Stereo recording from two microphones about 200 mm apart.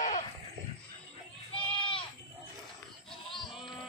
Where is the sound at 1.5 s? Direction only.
25° left (ahead or behind).